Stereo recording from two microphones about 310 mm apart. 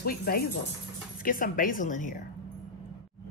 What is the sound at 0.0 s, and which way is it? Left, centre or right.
Speech, left.